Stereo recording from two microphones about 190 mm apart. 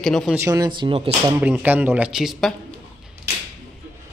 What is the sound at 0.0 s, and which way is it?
Speech, centre (ahead or behind).